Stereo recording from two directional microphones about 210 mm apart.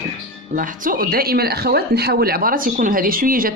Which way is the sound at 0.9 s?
45° right (ahead or behind).